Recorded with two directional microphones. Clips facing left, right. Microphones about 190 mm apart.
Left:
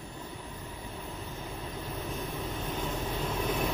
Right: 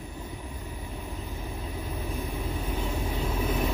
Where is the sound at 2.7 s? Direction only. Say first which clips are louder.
Right 2 dB; 10° right (ahead or behind).